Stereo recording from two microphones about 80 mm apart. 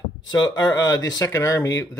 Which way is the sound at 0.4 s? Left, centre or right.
Left.